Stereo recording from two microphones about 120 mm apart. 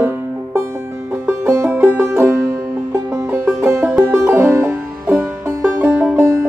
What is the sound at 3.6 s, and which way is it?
Music, 20° right (ahead or behind).